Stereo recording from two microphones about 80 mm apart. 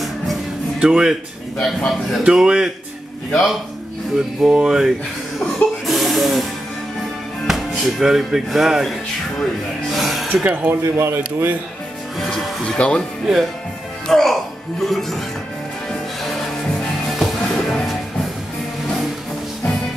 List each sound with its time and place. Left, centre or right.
0.7 s speech: centre
1.6 s speech: centre
2.2 s speech: centre
3.3 s speech: centre
4.4 s speech: centre
5.9 s music: centre
7.4 s speech: centre
9.8 s a sound: centre
10.3 s speech: right
12.3 s speech: centre
12.6 s speech: centre
14.0 s speech: centre
15.9 s music: centre